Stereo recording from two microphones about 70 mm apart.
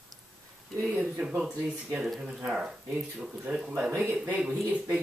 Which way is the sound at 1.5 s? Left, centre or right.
Centre.